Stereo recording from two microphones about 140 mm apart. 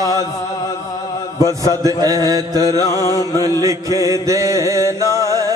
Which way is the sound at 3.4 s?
25° right (ahead or behind).